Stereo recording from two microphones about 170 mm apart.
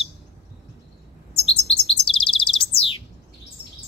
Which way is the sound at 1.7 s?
30° left (ahead or behind).